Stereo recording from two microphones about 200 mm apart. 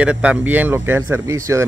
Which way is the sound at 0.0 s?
5° right (ahead or behind).